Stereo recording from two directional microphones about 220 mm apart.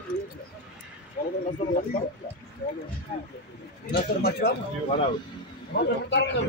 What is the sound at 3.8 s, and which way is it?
Speech, 45° left (ahead or behind).